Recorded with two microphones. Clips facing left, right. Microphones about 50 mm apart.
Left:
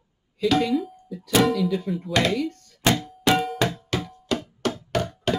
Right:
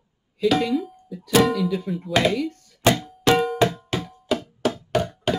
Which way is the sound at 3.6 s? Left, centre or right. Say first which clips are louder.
Right 4 dB; centre.